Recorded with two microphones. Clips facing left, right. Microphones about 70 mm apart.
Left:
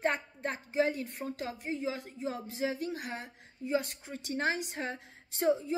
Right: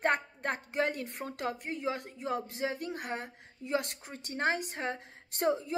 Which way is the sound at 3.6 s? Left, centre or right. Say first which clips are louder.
Left 1 dB; right.